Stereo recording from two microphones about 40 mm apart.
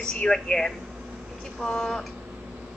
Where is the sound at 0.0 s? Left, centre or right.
Centre.